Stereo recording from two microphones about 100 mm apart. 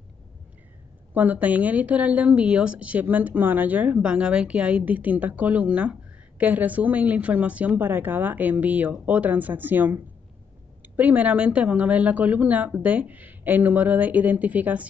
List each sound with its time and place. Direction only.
1.1 s a woman's voice: 15° right (ahead or behind)
11.0 s a woman's voice: 15° right (ahead or behind)